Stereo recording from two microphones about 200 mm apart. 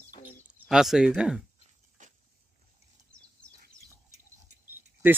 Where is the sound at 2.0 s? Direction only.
40° right (ahead or behind).